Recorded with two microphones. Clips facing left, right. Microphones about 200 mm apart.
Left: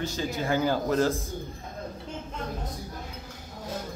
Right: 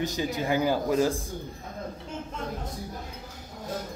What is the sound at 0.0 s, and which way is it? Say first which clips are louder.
A man's voice: right 1 dB; 15° right (ahead or behind).